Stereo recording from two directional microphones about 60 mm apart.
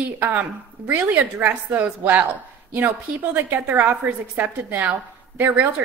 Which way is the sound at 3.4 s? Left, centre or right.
Right.